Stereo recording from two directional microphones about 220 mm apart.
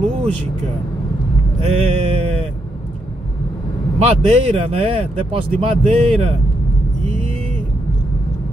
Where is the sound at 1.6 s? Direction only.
30° right (ahead or behind).